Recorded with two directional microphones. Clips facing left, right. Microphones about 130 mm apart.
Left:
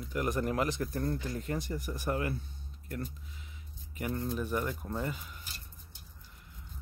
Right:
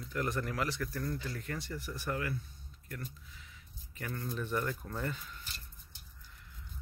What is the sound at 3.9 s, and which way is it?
Speech, 20° left (ahead or behind).